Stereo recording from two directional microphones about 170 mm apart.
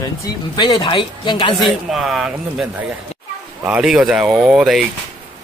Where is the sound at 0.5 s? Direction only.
25° left (ahead or behind).